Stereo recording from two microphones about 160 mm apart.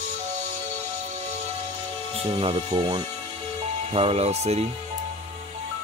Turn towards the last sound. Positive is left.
turn(degrees=-40)  # may be behind; listen again after turning